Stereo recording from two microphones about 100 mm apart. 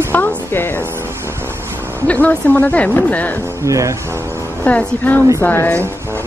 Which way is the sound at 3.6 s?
30° right (ahead or behind).